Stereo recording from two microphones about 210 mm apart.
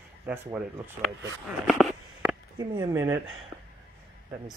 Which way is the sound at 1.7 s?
Centre (ahead or behind).